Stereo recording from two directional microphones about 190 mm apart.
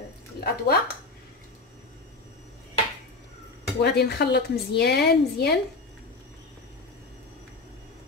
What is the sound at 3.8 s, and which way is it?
A woman's voice, 60° left (ahead or behind).